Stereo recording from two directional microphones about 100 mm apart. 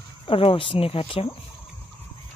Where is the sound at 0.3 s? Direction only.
70° left (ahead or behind).